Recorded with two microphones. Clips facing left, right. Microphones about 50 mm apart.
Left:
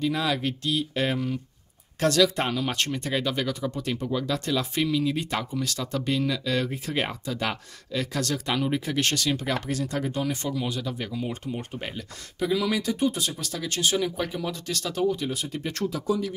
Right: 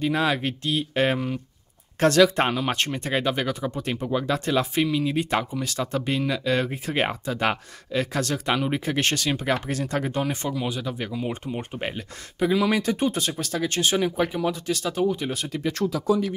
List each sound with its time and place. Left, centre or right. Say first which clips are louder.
0.0 s speech: right 3 dB; right
10.5 s speech: right 1 dB; centre
16.1 s speech: right 4 dB; right